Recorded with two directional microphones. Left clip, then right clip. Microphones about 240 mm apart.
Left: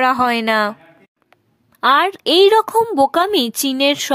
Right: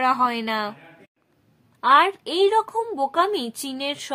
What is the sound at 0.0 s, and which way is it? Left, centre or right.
Speech, left.